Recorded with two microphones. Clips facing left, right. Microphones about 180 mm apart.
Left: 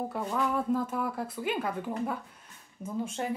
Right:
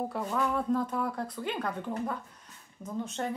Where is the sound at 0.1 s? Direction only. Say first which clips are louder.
Even; centre (ahead or behind).